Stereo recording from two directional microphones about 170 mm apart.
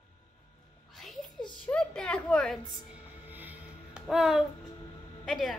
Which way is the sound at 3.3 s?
10° right (ahead or behind).